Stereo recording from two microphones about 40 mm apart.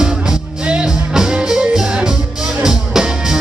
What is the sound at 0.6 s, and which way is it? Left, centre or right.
Music, right.